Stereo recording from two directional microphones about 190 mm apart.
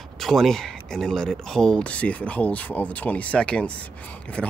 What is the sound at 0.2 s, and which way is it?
Speech, centre (ahead or behind).